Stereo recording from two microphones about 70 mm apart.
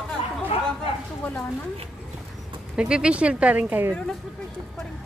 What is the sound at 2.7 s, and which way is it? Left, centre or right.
Speech, centre.